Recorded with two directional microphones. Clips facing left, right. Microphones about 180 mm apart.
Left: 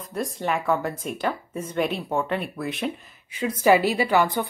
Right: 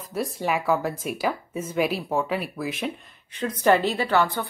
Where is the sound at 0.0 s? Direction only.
5° right (ahead or behind).